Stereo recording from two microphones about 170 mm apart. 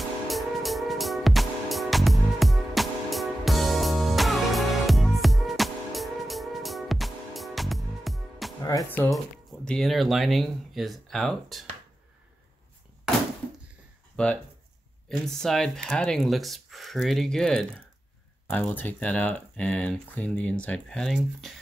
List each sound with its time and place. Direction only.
0.3 s music: centre (ahead or behind)
8.6 s music: 20° left (ahead or behind)
9.1 s speech: centre (ahead or behind)
14.1 s speech: 5° left (ahead or behind)